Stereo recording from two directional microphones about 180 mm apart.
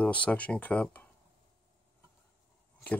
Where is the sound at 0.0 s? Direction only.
10° left (ahead or behind).